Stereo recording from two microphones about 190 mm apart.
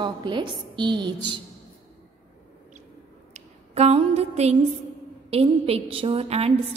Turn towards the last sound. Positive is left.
turn(degrees=-30)  # may be behind; listen again after turning